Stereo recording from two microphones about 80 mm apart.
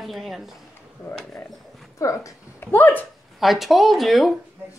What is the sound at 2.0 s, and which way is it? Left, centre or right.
Speech, left.